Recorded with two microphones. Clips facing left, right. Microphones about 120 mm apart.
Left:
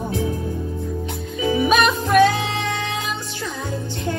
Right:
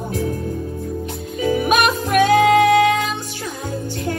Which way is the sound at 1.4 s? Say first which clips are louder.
Even; 50° right (ahead or behind).